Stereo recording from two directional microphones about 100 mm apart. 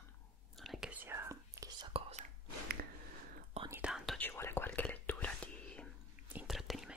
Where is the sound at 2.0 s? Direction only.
70° right (ahead or behind).